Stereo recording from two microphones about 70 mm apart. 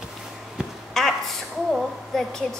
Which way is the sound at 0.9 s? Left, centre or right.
Centre.